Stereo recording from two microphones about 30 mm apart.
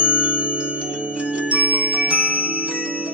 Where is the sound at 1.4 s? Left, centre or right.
Right.